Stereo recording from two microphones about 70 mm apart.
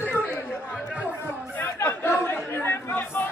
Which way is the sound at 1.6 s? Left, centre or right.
Left.